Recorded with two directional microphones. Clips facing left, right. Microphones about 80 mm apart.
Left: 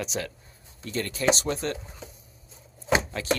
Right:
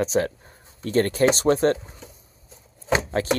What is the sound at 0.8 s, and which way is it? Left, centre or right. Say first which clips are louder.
Speech: right 11 dB; right.